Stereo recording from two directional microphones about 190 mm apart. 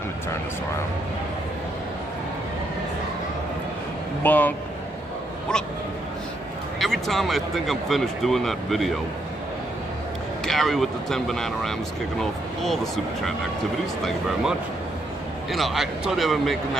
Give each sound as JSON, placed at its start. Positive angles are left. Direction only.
{"t": 4.2, "sound": "speech", "side_deg": 10}
{"t": 6.8, "sound": "speech", "side_deg": 0}
{"t": 10.4, "sound": "speech", "side_deg": 0}